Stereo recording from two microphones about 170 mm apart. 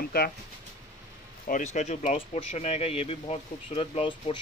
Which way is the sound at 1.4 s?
45° left (ahead or behind).